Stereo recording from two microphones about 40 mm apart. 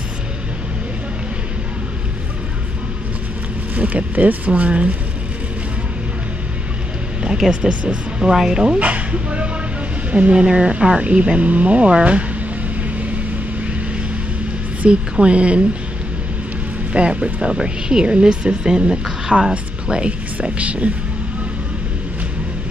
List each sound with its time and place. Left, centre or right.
3.7 s speech: right
7.2 s a sound: centre
7.6 s speech: right
8.2 s speech: centre
8.7 s speech: right
14.9 s speech: right
16.9 s speech: right